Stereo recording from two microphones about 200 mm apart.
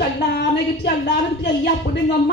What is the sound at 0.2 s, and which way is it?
Speech, 55° left (ahead or behind).